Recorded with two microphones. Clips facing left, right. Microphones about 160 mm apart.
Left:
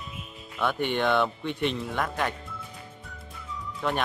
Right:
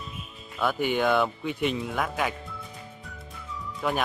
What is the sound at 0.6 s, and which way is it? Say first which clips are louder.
Speech: right 1 dB; 5° right (ahead or behind).